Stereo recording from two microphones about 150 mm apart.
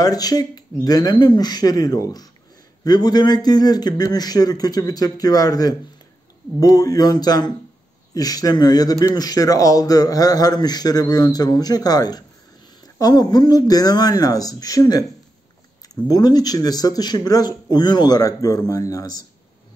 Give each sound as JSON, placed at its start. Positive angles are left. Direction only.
{"t": 0.0, "sound": "speech", "side_deg": 25}